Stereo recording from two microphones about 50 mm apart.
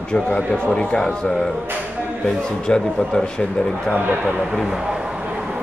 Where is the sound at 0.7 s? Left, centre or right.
Centre.